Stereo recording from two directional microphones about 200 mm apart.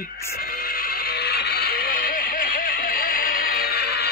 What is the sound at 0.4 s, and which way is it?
Music, 45° left (ahead or behind).